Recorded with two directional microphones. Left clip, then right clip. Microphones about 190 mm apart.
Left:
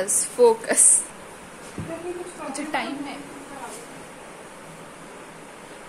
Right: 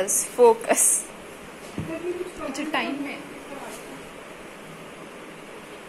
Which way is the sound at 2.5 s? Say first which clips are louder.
Even; 10° left (ahead or behind).